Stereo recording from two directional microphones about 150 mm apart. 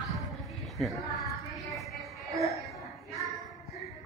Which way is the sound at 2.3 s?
20° right (ahead or behind).